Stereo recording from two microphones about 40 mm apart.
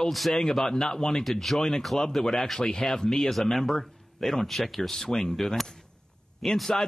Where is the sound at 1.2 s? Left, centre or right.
Centre.